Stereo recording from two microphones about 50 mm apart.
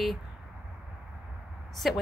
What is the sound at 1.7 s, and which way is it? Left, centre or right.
Speech, centre.